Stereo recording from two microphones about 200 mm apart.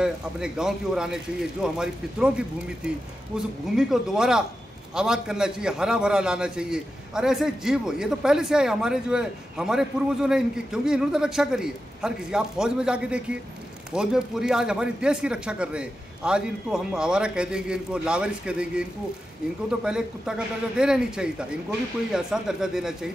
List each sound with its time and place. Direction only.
0.0 s a man's voice: 5° right (ahead or behind)